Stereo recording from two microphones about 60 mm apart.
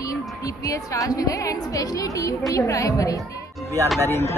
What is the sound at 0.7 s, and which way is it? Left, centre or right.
A woman's voice, left.